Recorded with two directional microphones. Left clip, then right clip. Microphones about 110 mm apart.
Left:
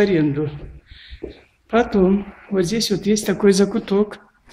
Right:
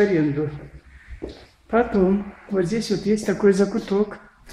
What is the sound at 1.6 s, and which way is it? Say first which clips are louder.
Speech: left 2 dB; 25° left (ahead or behind).